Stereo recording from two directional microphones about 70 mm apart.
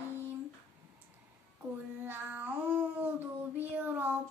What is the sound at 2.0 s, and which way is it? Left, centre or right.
Child singing, right.